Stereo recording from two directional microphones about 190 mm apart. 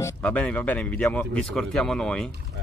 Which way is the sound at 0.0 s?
5° left (ahead or behind).